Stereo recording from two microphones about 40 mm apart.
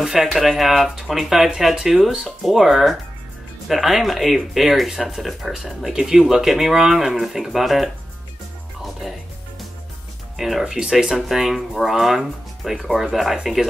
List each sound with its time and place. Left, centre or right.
0.0 s speech: centre
10.3 s speech: centre
10.6 s speech: centre
11.1 s speech: centre